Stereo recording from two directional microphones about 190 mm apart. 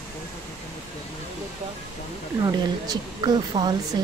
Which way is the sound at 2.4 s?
25° right (ahead or behind).